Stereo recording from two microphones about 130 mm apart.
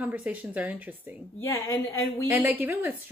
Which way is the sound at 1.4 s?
20° left (ahead or behind).